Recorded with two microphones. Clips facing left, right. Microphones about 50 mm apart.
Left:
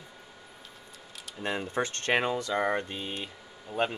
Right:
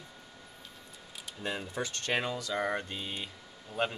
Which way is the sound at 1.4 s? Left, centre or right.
Left.